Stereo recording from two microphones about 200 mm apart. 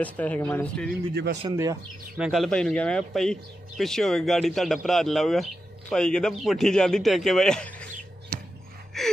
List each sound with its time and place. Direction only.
0.0 s speech: 5° left (ahead or behind)
1.1 s speech: 55° right (ahead or behind)
2.1 s speech: centre (ahead or behind)
9.0 s gasp: centre (ahead or behind)